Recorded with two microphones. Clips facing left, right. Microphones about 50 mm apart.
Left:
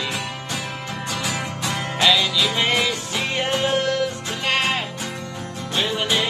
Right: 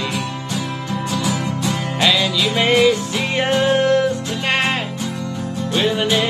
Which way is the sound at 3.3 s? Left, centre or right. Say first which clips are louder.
Right 6 dB; right.